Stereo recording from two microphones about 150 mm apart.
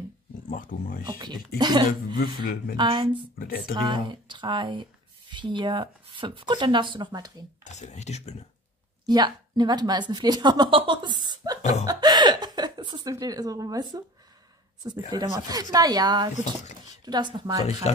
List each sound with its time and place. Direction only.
0.5 s speech: 65° left (ahead or behind)
1.0 s speech: 30° right (ahead or behind)
2.3 s speech: 85° left
2.8 s speech: 30° right (ahead or behind)
3.3 s speech: 80° left
3.7 s speech: 30° right (ahead or behind)
7.6 s speech: 50° left (ahead or behind)
9.0 s speech: 30° right (ahead or behind)